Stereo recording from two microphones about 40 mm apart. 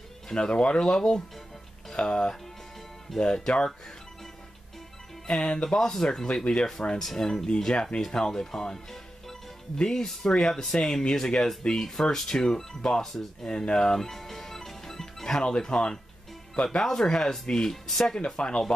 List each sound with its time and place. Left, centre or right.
0.3 s speech: left
5.4 s speech: left
13.9 s music: centre
15.4 s speech: left